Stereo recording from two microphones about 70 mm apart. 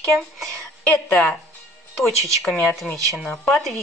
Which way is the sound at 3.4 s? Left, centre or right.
Centre.